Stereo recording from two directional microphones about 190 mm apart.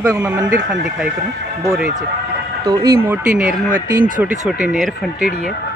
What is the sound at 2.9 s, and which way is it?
Speech, 10° right (ahead or behind).